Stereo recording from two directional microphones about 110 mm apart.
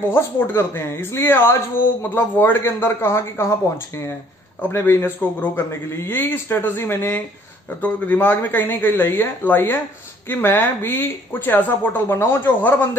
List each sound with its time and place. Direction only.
0.1 s a man's voice: 20° left (ahead or behind)